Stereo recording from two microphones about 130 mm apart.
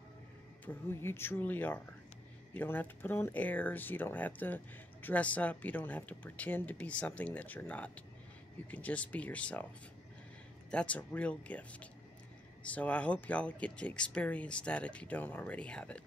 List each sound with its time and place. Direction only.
0.7 s speech: 15° left (ahead or behind)
10.7 s speech: 10° left (ahead or behind)